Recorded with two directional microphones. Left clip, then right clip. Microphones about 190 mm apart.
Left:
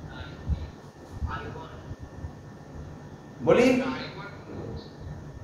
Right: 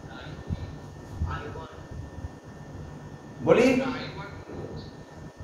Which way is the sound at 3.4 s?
20° left (ahead or behind).